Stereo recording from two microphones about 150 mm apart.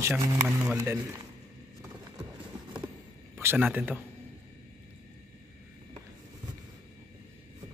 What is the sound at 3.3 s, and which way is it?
Speech, 15° right (ahead or behind).